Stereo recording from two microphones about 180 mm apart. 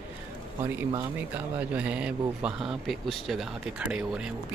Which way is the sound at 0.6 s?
15° right (ahead or behind).